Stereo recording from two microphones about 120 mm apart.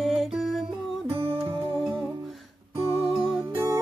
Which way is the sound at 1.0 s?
55° right (ahead or behind).